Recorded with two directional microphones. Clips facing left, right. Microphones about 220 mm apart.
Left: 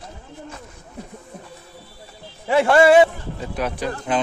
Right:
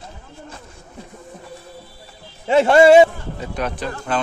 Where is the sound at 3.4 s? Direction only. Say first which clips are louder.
Even; 5° left (ahead or behind).